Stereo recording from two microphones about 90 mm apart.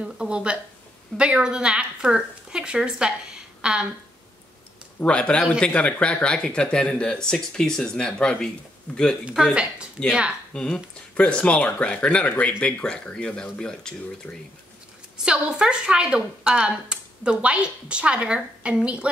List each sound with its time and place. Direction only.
0.0 s a woman's voice: 10° right (ahead or behind)
5.0 s speech: 10° left (ahead or behind)
9.2 s a woman's voice: 5° right (ahead or behind)
10.5 s speech: 10° left (ahead or behind)
15.2 s a woman's voice: 10° right (ahead or behind)